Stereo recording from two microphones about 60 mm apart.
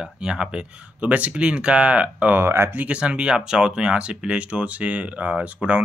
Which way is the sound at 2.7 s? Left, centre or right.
Right.